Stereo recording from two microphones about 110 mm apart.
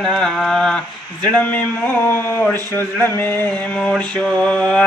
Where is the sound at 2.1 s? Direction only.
20° left (ahead or behind).